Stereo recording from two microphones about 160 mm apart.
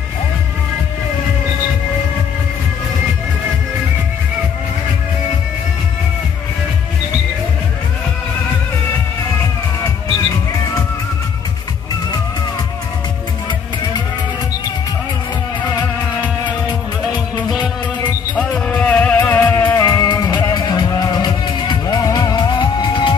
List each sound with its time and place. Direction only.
18.3 s music: 10° left (ahead or behind); by 23.1 s 30° left (ahead or behind)